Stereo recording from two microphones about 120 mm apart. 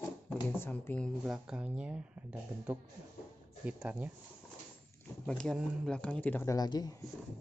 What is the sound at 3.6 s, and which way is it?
Speech, 10° right (ahead or behind).